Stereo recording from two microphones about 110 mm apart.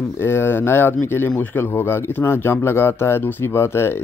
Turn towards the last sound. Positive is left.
turn(degrees=25)  # may be behind; listen again after turning